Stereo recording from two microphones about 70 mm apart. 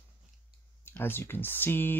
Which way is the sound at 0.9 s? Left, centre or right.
Left.